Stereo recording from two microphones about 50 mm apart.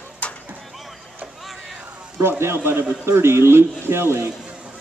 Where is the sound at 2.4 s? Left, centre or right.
Right.